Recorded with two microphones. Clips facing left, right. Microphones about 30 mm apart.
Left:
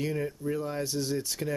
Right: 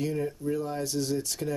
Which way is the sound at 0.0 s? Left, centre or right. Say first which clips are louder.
Right 1 dB; centre.